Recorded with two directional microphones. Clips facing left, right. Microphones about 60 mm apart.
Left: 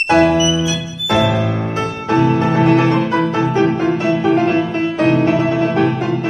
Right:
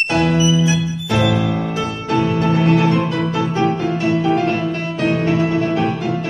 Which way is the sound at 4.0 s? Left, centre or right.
Left.